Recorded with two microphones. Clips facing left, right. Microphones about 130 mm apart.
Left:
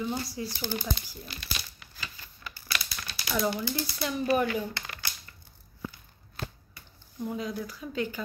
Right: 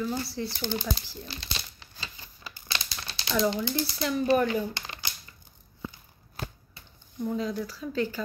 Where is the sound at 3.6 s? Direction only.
20° right (ahead or behind).